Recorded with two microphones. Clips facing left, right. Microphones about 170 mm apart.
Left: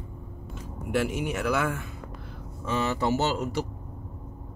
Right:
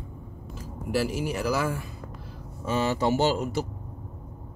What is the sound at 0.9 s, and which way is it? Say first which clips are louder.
Speech: even; centre (ahead or behind).